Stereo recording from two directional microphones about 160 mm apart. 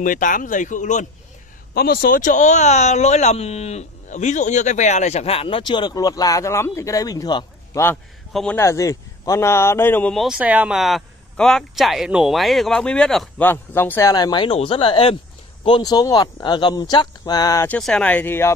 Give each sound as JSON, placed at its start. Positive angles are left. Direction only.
{"t": 0.0, "sound": "speech", "side_deg": 55}
{"t": 1.7, "sound": "speech", "side_deg": 75}
{"t": 8.3, "sound": "a man's voice", "side_deg": 0}
{"t": 8.5, "sound": "speech", "side_deg": 20}
{"t": 10.2, "sound": "speech", "side_deg": -5}
{"t": 14.1, "sound": "speech", "side_deg": 25}
{"t": 17.6, "sound": "speech", "side_deg": 5}